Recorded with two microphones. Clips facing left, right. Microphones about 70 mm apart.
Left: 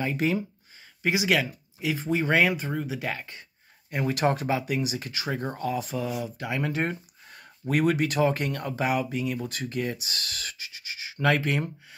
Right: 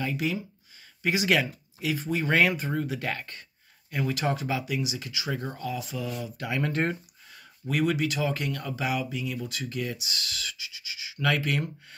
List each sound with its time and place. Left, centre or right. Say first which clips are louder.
0.0 s speech: left 3 dB; left
1.0 s speech: even; centre
2.2 s speech: even; centre
3.9 s speech: left 3 dB; left
5.3 s speech: left 4 dB; left
6.2 s speech: even; left
7.6 s speech: left 2 dB; left